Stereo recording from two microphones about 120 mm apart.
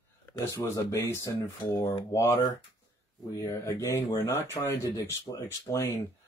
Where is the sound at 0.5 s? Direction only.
20° left (ahead or behind).